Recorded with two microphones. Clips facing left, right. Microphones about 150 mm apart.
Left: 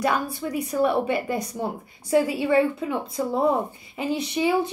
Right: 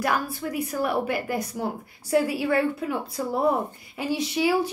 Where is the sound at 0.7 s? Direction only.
25° left (ahead or behind).